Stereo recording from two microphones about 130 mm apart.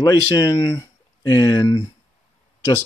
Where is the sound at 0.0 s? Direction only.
25° left (ahead or behind).